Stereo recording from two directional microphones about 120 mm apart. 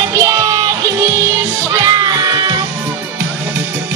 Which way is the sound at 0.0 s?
30° right (ahead or behind).